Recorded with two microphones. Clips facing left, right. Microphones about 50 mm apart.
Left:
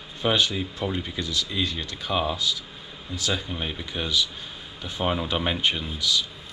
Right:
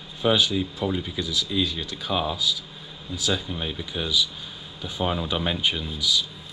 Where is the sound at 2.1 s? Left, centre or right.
Centre.